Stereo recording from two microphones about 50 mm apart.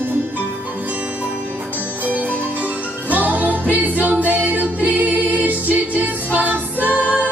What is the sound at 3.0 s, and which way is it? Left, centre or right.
Music, right.